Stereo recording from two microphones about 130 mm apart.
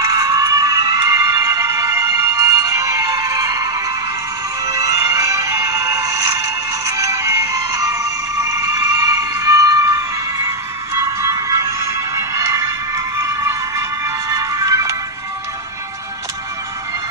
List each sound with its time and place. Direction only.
0.0 s music: 25° right (ahead or behind)
11.1 s music: 25° right (ahead or behind)